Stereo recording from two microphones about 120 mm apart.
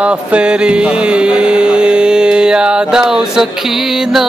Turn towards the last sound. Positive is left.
turn(degrees=-5)  # may be behind; listen again after turning